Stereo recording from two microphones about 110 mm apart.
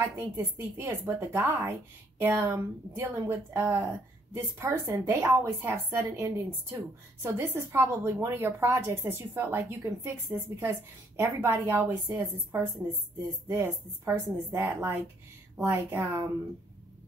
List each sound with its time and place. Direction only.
0.0 s speech: 20° right (ahead or behind)